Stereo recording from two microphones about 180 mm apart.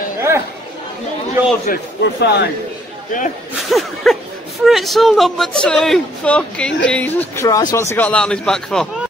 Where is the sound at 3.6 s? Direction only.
Centre (ahead or behind).